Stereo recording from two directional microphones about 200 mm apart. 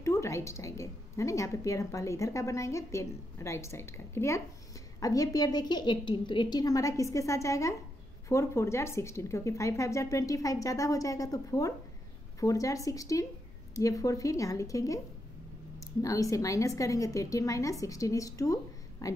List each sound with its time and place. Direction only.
0.0 s a woman's voice: 15° left (ahead or behind)